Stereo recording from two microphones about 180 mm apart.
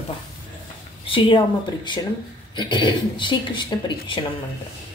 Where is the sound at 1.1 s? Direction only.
30° left (ahead or behind).